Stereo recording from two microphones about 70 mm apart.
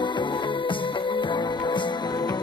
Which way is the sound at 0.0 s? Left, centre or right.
Left.